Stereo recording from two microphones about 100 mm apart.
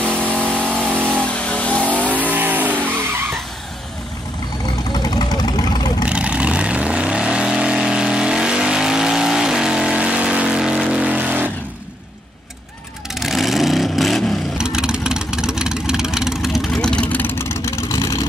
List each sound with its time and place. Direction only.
0.0 s vehicle: 20° right (ahead or behind)
1.2 s vehicle: 10° left (ahead or behind)
1.9 s vehicle: 15° right (ahead or behind)
4.9 s vehicle: 45° left (ahead or behind)
6.0 s vehicle: 10° right (ahead or behind)
13.1 s vehicle: centre (ahead or behind); by 18.2 s 35° left (ahead or behind)